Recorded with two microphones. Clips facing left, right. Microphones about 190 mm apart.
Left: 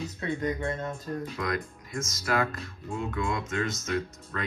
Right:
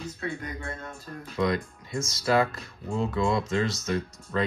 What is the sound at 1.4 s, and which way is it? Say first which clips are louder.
Speech: right 5 dB; 30° right (ahead or behind).